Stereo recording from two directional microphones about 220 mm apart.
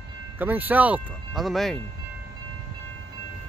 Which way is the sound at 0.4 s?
10° right (ahead or behind).